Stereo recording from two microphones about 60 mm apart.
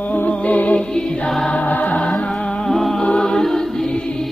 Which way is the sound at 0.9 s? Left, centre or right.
Centre.